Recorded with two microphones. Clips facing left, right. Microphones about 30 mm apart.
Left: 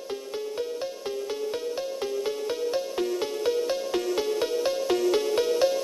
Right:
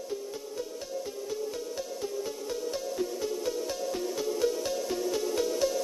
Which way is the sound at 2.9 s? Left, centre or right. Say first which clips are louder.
Left 4 dB; left.